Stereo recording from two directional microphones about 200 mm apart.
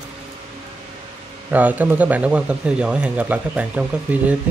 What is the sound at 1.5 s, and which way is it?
Speech, 10° right (ahead or behind).